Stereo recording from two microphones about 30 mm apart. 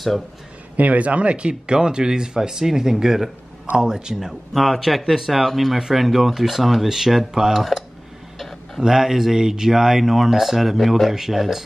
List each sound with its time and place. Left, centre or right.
0.7 s speech: right
1.5 s speech: right
4.6 s speech: centre
7.5 s speech: centre
8.4 s a sound: centre
8.8 s speech: centre